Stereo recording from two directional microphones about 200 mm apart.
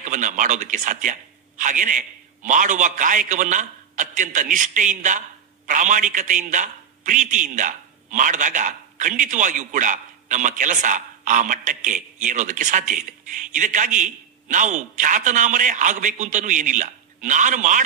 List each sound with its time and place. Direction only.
0.0 s a man's voice: 40° right (ahead or behind)